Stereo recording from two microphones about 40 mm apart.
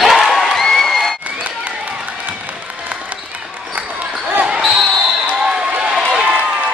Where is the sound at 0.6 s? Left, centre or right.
Centre.